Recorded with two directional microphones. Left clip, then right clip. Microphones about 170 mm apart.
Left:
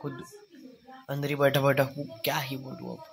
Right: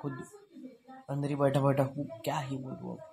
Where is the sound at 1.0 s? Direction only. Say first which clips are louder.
Left 4 dB; centre (ahead or behind).